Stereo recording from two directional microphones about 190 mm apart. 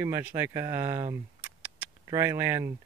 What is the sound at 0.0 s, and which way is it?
Speech, 10° right (ahead or behind).